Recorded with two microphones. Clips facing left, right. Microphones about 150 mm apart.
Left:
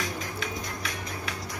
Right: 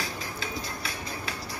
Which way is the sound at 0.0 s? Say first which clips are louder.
Left 2 dB; 30° right (ahead or behind).